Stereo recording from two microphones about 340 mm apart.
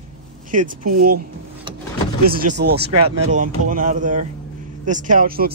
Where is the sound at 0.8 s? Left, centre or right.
Right.